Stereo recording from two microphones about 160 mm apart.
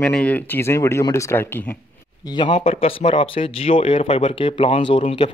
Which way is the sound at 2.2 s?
30° left (ahead or behind).